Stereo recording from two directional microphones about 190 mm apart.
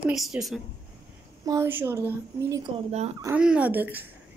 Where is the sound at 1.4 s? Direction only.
15° right (ahead or behind).